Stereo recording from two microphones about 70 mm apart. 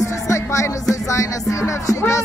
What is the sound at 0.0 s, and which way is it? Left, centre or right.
Music, left.